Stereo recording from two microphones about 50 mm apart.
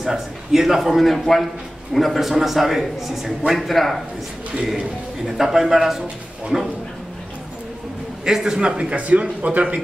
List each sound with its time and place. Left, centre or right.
0.0 s a man's voice: centre
4.6 s speech: centre
8.3 s a man's voice: centre; by 9.8 s right